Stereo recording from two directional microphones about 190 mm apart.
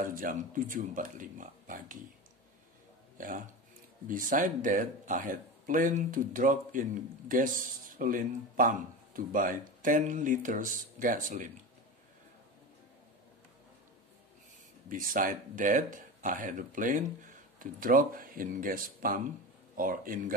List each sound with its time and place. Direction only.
0.0 s speech: 45° right (ahead or behind)
3.2 s speech: 45° right (ahead or behind)
14.9 s speech: 45° right (ahead or behind)